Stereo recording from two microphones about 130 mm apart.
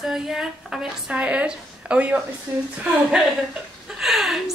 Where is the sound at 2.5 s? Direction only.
20° right (ahead or behind).